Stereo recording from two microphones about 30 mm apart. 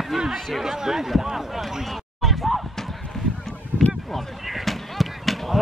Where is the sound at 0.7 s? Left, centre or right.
Centre.